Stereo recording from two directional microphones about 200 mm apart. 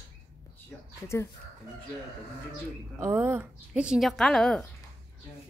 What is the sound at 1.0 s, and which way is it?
Speech, 15° left (ahead or behind).